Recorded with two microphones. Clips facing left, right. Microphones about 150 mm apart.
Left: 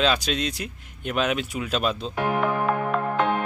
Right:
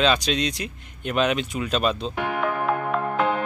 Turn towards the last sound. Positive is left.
turn(degrees=0)  # may be behind; listen again after turning